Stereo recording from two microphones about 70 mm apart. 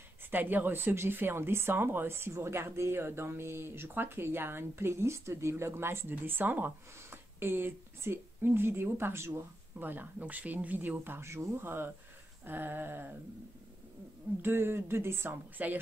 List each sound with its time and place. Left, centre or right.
0.3 s speech: right
11.1 s speech: right
12.4 s a sound: right
14.4 s speech: right